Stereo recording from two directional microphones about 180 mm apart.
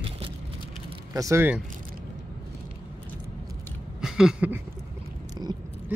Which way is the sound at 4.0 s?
5° right (ahead or behind).